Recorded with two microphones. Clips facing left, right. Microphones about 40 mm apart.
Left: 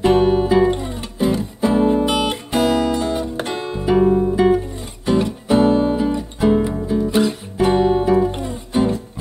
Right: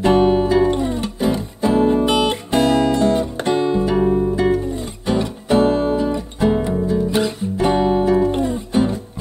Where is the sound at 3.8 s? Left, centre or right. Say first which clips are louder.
Left 2 dB; centre.